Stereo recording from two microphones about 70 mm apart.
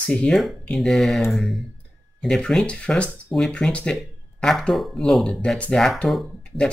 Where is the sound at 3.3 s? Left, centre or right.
Centre.